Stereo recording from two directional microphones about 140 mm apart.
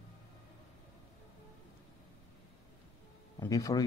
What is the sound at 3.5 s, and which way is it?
Speech, 25° left (ahead or behind).